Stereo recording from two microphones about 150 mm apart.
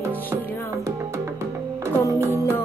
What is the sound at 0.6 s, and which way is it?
Music, 20° right (ahead or behind).